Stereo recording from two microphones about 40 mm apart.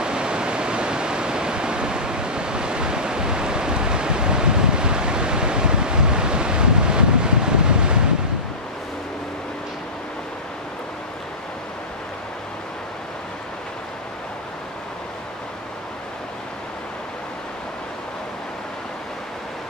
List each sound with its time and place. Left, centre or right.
0.0 s waterfall: right